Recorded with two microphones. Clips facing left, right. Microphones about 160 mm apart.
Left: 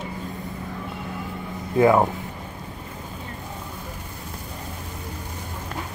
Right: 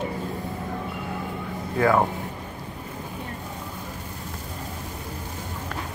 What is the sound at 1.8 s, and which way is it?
Speech, 20° left (ahead or behind).